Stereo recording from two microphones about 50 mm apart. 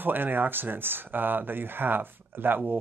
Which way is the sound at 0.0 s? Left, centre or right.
Right.